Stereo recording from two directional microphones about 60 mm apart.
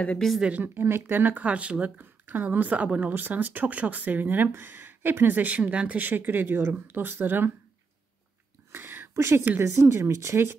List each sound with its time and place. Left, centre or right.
0.2 s a woman's voice: centre
0.6 s speech: right
8.7 s a sound: right
9.6 s speech: right